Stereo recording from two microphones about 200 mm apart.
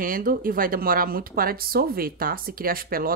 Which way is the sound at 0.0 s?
45° right (ahead or behind).